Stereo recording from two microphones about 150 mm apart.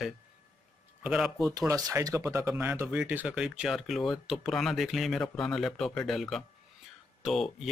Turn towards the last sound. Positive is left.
turn(degrees=0)  # may be behind; listen again after turning